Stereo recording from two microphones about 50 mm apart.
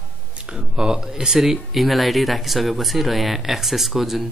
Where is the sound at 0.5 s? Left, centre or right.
Centre.